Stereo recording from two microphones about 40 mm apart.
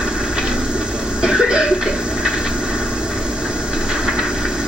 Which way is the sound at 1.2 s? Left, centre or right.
Right.